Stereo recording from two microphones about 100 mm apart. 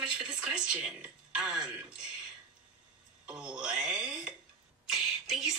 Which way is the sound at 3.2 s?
10° right (ahead or behind).